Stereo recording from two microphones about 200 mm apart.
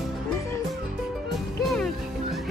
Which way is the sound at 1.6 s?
Centre (ahead or behind).